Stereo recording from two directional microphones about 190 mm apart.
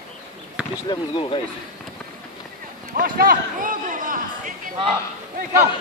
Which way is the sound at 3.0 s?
50° right (ahead or behind).